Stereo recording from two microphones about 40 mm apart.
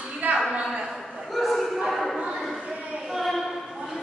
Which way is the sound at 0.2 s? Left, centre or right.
Right.